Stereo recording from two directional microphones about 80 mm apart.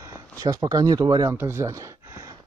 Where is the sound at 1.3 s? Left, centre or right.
Right.